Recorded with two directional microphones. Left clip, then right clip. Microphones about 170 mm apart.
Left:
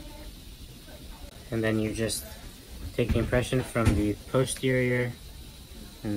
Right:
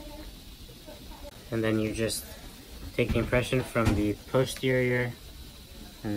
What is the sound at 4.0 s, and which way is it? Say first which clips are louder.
Speech: even; 15° right (ahead or behind).